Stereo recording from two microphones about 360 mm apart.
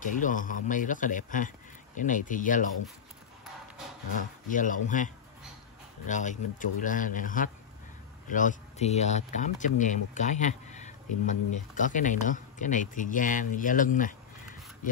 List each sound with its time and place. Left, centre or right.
0.0 s speech: left
4.5 s speech: left